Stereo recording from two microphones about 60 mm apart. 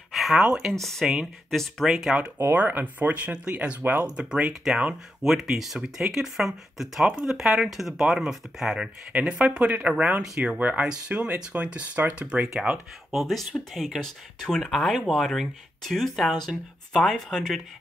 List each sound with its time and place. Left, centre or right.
0.1 s a sound: centre
0.4 s speech: centre
0.7 s speech: centre
2.5 s speech: right
4.0 s speech: centre
12.7 s speech: centre